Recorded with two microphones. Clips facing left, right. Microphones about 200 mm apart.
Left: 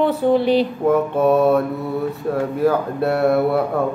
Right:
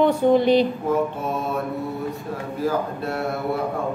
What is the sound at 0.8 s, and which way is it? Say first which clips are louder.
Speech: left 7 dB; 60° left (ahead or behind).